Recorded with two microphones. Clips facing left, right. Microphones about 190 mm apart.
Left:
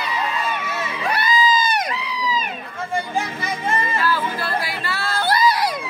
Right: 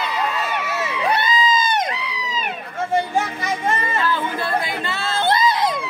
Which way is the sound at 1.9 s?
65° right (ahead or behind).